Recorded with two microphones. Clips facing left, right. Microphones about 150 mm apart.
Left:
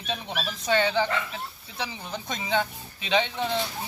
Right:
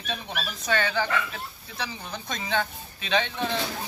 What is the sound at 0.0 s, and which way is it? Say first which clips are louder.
Speech: left 2 dB; 20° left (ahead or behind).